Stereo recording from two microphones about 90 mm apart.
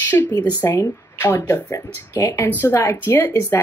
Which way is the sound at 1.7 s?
40° left (ahead or behind).